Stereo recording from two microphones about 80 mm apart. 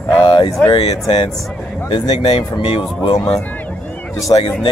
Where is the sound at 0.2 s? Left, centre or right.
Left.